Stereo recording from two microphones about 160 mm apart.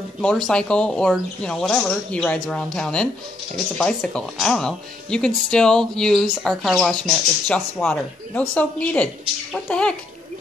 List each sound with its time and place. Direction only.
0.2 s speech: 5° left (ahead or behind)